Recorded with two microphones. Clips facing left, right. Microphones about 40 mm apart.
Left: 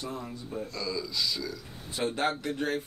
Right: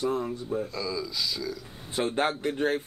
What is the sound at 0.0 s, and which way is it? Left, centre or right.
Speech, right.